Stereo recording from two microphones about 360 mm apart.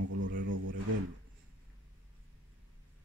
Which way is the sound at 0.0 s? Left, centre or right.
Right.